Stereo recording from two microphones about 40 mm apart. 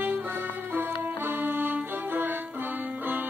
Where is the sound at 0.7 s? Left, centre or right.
Right.